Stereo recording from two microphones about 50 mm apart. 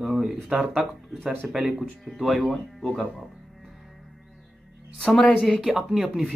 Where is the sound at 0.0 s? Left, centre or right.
Centre.